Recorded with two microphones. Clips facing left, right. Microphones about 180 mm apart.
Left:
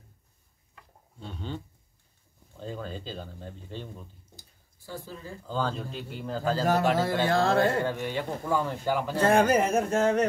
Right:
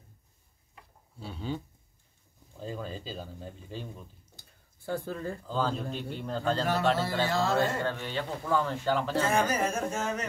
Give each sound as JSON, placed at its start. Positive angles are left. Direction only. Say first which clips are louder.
{"t": 1.2, "sound": "speech", "louder": "right 2 dB", "side_deg": -5}
{"t": 4.4, "sound": "a sound", "louder": "left 2 dB", "side_deg": -55}
{"t": 5.5, "sound": "speech", "louder": "left 1 dB", "side_deg": 0}
{"t": 7.0, "sound": "speech", "louder": "left 4 dB", "side_deg": 50}
{"t": 7.8, "sound": "speech", "louder": "left 3 dB", "side_deg": 15}
{"t": 9.2, "sound": "speech", "louder": "left 10 dB", "side_deg": 60}